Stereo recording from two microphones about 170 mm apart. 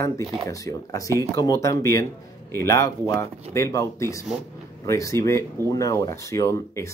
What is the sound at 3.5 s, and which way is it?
Speech, 20° left (ahead or behind).